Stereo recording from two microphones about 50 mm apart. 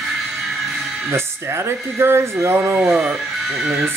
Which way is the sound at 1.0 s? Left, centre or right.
Right.